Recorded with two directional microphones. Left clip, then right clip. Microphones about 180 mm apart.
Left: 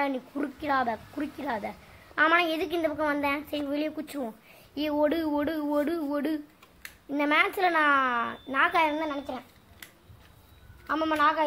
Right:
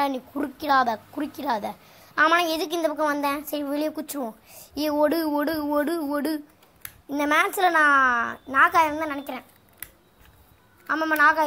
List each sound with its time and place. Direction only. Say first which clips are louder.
0.0 s a woman's voice: right 4 dB; 10° right (ahead or behind)
10.9 s a woman's voice: right 5 dB; 5° right (ahead or behind)